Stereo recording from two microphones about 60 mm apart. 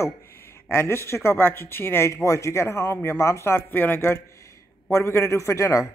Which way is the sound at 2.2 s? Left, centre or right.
Left.